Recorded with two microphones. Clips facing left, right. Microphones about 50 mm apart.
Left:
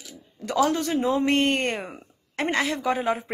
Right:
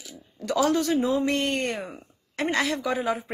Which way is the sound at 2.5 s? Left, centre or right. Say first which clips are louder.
Left 1 dB; left.